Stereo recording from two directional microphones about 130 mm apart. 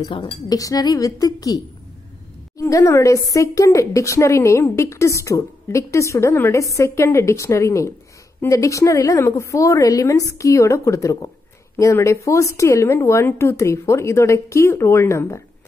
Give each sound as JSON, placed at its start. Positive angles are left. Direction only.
{"t": 0.0, "sound": "a woman's voice", "side_deg": 40}